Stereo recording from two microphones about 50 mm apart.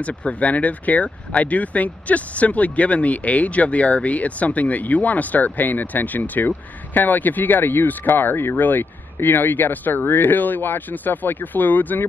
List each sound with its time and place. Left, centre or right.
0.0 s speech: left